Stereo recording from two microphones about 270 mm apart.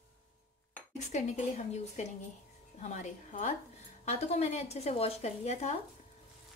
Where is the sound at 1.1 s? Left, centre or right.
Left.